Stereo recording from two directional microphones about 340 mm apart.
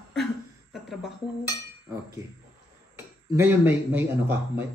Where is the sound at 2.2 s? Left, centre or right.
Centre.